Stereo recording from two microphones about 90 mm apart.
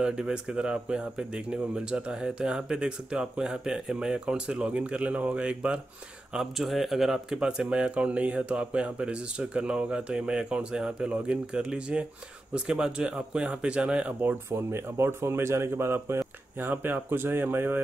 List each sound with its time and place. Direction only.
0.0 s speech: 10° right (ahead or behind)
6.3 s speech: centre (ahead or behind)
14.5 s speech: 30° right (ahead or behind)